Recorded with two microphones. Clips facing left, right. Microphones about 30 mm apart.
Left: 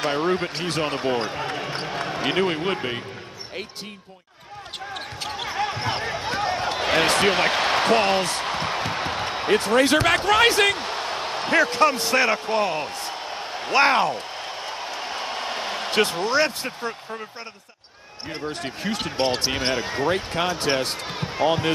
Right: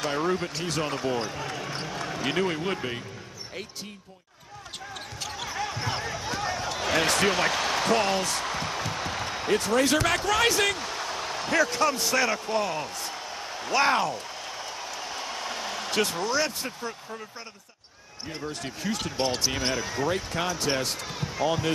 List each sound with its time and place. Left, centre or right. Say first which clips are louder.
0.0 s speech: left 4 dB; left
4.9 s basketball bounce: left 5 dB; left
18.5 s speech: left 3 dB; left